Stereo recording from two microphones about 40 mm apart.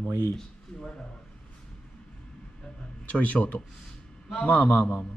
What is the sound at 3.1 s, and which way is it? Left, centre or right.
A man's voice, left.